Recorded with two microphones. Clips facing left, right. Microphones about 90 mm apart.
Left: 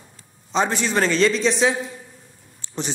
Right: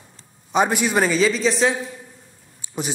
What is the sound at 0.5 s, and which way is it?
A man's voice, 10° right (ahead or behind).